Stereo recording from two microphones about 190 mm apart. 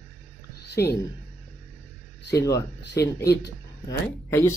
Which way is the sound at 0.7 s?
60° left (ahead or behind).